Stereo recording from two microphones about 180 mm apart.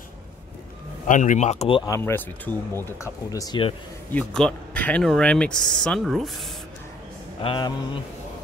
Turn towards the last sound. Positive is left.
turn(degrees=25)  # may be behind; listen again after turning